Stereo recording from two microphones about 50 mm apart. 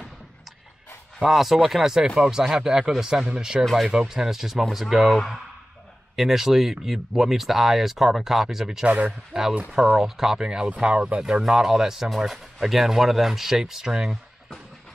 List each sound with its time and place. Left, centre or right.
1.2 s speech: centre
8.8 s speech: right
9.3 s speech: centre